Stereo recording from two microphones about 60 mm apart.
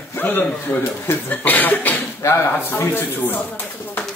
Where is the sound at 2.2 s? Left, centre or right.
Left.